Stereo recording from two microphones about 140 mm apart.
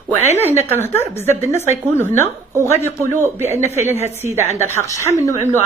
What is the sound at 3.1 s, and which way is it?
Speech, 15° right (ahead or behind).